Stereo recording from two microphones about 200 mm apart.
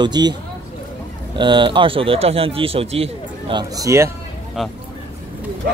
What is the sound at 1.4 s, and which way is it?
Speech, 25° right (ahead or behind).